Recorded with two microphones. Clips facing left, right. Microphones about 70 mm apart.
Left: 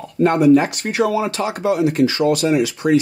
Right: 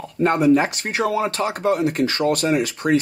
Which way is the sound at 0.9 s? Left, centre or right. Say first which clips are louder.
Left 3 dB; right.